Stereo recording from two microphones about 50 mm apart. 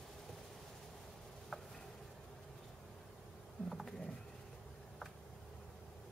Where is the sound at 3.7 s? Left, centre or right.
Centre.